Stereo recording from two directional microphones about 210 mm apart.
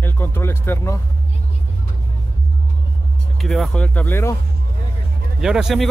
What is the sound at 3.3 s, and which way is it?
Speech, centre (ahead or behind).